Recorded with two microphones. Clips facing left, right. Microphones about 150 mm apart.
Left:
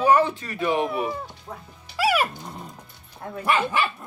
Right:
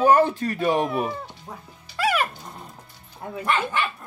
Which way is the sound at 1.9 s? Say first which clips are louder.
Left 1 dB; 10° left (ahead or behind).